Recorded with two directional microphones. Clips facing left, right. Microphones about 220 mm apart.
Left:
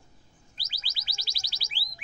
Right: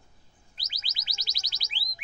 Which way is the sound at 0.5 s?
20° right (ahead or behind).